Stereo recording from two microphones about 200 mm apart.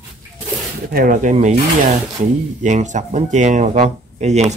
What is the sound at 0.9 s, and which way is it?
Speech, 45° right (ahead or behind).